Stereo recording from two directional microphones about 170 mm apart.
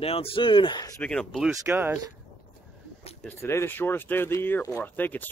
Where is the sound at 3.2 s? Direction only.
10° left (ahead or behind).